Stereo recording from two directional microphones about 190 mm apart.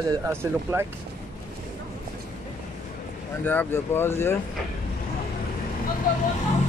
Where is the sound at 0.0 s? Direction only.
15° right (ahead or behind).